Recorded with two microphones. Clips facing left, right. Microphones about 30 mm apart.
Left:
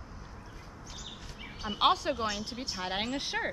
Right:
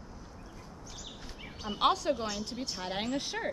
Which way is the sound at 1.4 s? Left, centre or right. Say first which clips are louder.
Left 1 dB; centre.